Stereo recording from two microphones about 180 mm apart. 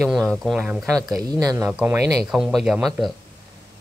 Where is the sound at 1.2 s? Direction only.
20° right (ahead or behind).